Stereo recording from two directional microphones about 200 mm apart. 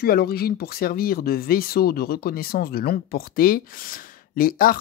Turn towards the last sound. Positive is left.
turn(degrees=45)  # may be behind; listen again after turning